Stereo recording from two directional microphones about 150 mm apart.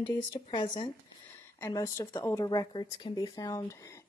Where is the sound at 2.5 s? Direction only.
30° left (ahead or behind).